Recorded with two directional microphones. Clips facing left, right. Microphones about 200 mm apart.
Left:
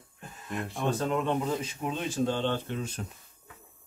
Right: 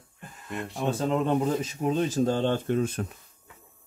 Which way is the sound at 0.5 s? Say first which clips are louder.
Right 1 dB; centre (ahead or behind).